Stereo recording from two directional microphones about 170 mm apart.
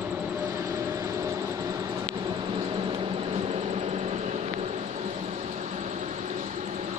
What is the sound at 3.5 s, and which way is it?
Vehicle, 40° right (ahead or behind).